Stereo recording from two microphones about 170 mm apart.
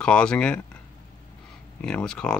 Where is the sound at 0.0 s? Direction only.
5° left (ahead or behind).